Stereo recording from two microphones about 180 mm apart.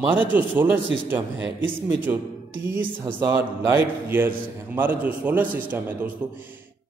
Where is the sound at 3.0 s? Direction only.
25° right (ahead or behind).